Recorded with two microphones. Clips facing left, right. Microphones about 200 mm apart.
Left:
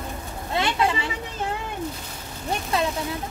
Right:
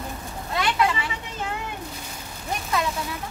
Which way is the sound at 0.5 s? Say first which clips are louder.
Even; 25° left (ahead or behind).